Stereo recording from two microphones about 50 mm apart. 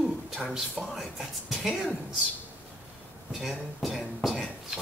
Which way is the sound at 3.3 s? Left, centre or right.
Centre.